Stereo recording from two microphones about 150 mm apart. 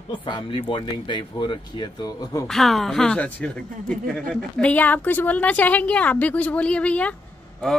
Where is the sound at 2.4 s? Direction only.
Centre (ahead or behind).